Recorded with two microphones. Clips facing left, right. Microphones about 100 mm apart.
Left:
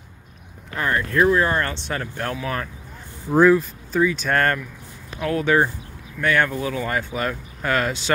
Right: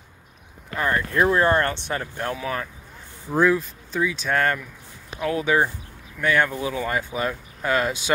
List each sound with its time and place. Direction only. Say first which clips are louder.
0.7 s speech: left 1 dB; 15° right (ahead or behind)
1.3 s speech: right 1 dB; 30° right (ahead or behind)
1.7 s speech: even; 15° right (ahead or behind)
3.3 s speech: left 5 dB; 5° left (ahead or behind)
5.2 s speech: left 2 dB; 15° right (ahead or behind)